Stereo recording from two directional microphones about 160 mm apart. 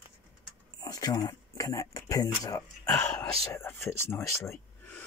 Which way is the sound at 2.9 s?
10° left (ahead or behind).